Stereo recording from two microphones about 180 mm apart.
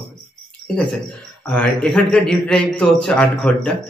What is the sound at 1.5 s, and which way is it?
A man's voice, 5° left (ahead or behind).